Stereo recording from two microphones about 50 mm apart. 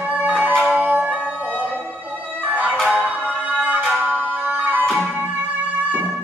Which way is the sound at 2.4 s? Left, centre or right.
Right.